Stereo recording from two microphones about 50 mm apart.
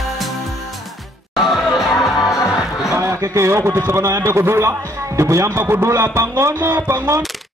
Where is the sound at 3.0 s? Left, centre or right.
Right.